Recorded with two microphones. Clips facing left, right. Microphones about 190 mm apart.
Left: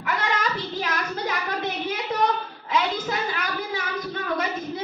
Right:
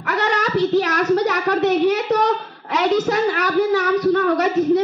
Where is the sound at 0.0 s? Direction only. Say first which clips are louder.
Right 5 dB; 70° right (ahead or behind).